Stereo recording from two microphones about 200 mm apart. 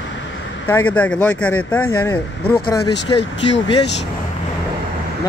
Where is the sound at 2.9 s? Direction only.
60° left (ahead or behind).